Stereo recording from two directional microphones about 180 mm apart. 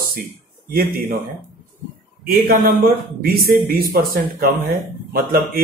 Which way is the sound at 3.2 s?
55° right (ahead or behind).